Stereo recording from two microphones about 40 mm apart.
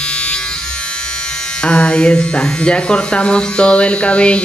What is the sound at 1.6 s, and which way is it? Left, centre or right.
Speech, left.